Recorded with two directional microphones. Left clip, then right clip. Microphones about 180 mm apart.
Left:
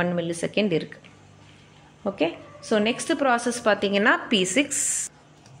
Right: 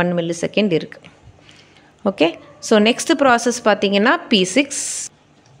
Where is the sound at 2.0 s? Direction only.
40° right (ahead or behind).